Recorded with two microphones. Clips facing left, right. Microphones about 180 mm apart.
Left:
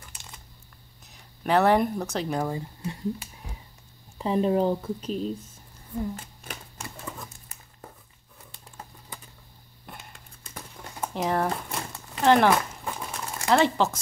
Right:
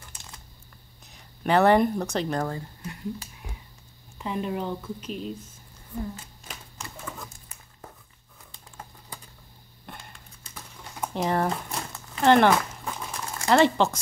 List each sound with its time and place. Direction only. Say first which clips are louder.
1.1 s speech: right 1 dB; centre (ahead or behind)
2.8 s speech: left 4 dB; 25° left (ahead or behind)
4.2 s speech: left 7 dB; 35° left (ahead or behind)
11.0 s speech: right 1 dB; centre (ahead or behind)
12.2 s a sound: right 1 dB; centre (ahead or behind)
13.5 s speech: right 2 dB; centre (ahead or behind)